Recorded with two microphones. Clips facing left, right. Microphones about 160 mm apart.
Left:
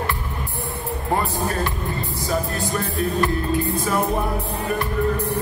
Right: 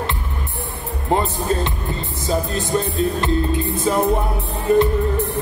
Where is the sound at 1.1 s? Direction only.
20° right (ahead or behind).